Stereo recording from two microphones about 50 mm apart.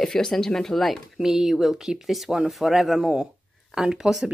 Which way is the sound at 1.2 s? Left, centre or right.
Centre.